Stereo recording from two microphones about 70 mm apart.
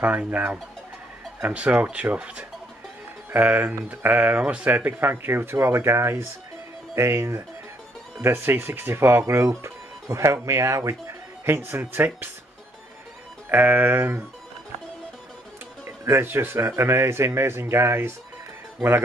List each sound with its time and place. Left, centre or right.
0.0 s music: right
1.4 s speech: centre; by 11.8 s right
11.8 s music: right
13.5 s music: right
15.8 s speech: right